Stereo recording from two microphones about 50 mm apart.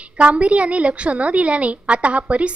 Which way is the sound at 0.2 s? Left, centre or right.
Right.